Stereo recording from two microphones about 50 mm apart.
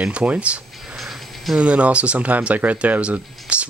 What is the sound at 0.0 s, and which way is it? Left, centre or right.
Speech, right.